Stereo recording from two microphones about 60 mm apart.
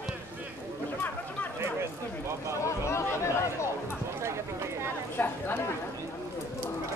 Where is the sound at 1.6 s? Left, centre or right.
Right.